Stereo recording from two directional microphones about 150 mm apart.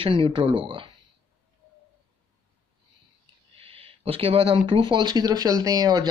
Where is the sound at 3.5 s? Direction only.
40° right (ahead or behind).